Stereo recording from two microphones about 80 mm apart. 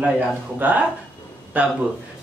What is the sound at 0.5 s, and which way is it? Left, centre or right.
Speech, centre.